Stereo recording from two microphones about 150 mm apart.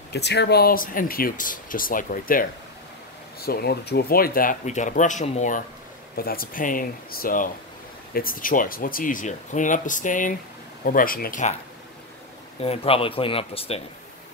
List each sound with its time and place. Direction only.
0.1 s speech: 90° left; by 2.4 s 65° left (ahead or behind)
3.3 s speech: 90° left; by 5.6 s 50° left (ahead or behind)
6.1 s speech: 80° left; by 11.5 s 65° left (ahead or behind)
12.5 s speech: 40° left (ahead or behind)